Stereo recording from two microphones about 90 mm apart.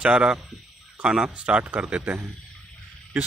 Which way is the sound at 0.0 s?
10° right (ahead or behind).